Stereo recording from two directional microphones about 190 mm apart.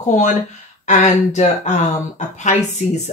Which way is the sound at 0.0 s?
40° left (ahead or behind).